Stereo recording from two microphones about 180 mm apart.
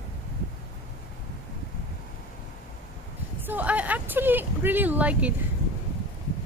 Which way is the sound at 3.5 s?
10° right (ahead or behind).